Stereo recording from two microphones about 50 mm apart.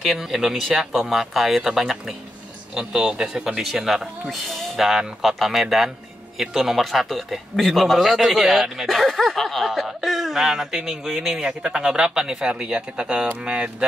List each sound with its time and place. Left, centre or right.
0.0 s speech: centre
11.4 s speech: centre